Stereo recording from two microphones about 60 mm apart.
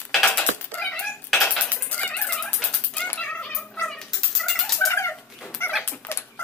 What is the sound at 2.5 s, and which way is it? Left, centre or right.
Cat, left.